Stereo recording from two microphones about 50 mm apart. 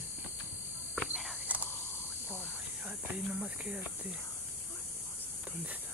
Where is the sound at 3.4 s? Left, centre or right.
Right.